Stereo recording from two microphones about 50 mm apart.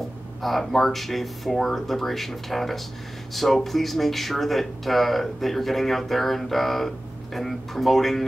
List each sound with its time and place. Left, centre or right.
0.4 s speech: centre